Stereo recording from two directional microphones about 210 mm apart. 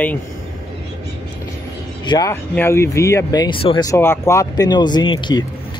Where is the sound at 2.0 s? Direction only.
15° left (ahead or behind).